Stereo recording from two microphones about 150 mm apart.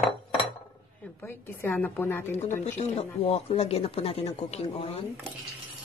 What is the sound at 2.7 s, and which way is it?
Speech, 45° left (ahead or behind).